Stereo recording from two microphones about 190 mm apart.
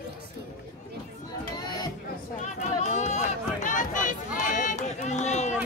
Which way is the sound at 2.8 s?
35° left (ahead or behind).